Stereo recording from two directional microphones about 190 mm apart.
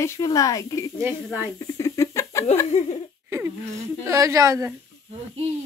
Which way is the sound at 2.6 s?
35° left (ahead or behind).